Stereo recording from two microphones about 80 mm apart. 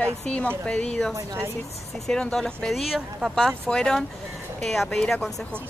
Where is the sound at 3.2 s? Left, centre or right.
Centre.